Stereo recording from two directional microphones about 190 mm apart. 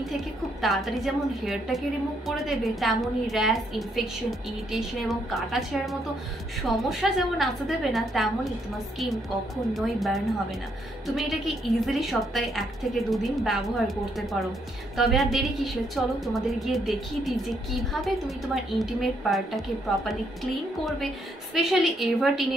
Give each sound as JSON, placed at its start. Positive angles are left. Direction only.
{"t": 0.6, "sound": "a woman's voice", "side_deg": 0}
{"t": 9.8, "sound": "a woman's voice", "side_deg": 0}
{"t": 21.5, "sound": "a woman's voice", "side_deg": 0}